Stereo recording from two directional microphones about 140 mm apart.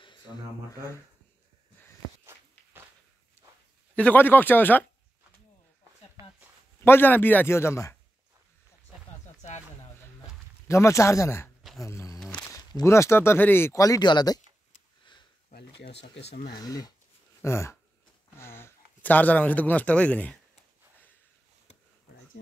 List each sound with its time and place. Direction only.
3.9 s speech: 10° left (ahead or behind)
6.8 s speech: 15° left (ahead or behind)
10.7 s speech: 20° left (ahead or behind)
11.8 s a sound: 20° left (ahead or behind)
12.4 s speech: 20° left (ahead or behind)
16.5 s speech: 25° left (ahead or behind); by 20.3 s 10° left (ahead or behind)